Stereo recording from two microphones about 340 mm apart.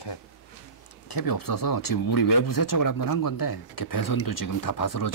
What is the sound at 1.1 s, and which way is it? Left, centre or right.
Speech, left.